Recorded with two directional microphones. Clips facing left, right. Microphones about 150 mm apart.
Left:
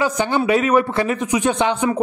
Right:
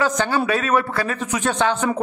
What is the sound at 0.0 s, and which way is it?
A man's voice, 15° left (ahead or behind).